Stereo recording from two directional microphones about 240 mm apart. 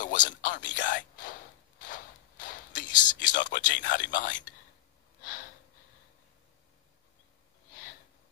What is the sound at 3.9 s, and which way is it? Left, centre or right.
Speech, left.